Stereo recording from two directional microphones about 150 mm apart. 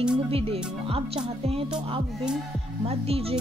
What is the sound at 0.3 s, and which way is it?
Music, 40° right (ahead or behind).